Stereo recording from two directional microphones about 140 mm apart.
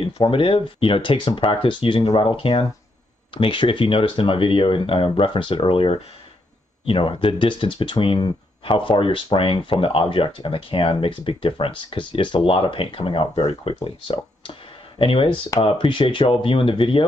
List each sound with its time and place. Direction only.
0.0 s speech: 40° left (ahead or behind)